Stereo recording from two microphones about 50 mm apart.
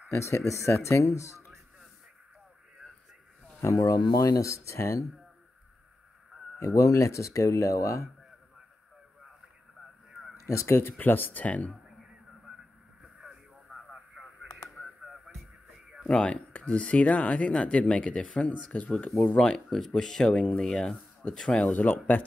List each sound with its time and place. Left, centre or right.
0.1 s speech: left
3.6 s speech: left
4.4 s speech: left
6.6 s speech: left
10.4 s speech: left
10.8 s speech: left
11.4 s speech: left
13.7 s vehicle: centre
15.0 s music: centre
16.1 s speech: centre
16.5 s speech: left
19.0 s speech: centre
21.6 s speech: left